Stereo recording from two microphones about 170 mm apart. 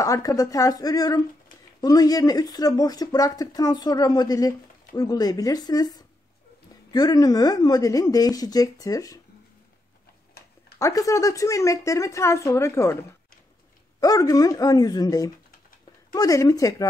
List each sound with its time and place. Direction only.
0.0 s speech: 20° left (ahead or behind)
10.8 s speech: 20° left (ahead or behind)
13.9 s speech: 20° left (ahead or behind)